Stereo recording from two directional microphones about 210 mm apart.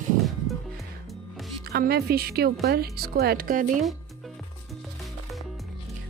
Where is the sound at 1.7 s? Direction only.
50° right (ahead or behind).